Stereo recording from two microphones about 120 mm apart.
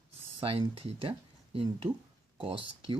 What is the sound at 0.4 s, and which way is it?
Speech, 50° right (ahead or behind).